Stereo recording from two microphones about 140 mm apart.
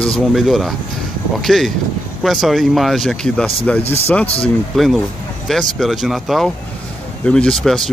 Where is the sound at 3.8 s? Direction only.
45° left (ahead or behind).